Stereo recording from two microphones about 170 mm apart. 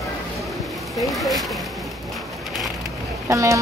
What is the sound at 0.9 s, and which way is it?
Speech, centre (ahead or behind).